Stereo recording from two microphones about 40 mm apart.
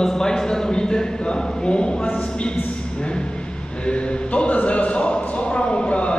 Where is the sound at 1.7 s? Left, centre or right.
Left.